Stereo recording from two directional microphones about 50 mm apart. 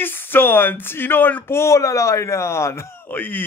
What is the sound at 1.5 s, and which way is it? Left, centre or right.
Speech, left.